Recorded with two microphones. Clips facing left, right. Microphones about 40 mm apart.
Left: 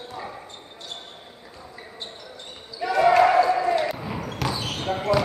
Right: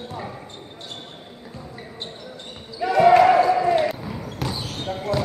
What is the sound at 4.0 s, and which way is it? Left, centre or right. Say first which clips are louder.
Basketball bounce: left 1 dB; left.